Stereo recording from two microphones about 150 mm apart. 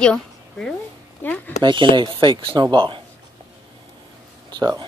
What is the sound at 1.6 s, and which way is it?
Speech, 35° right (ahead or behind).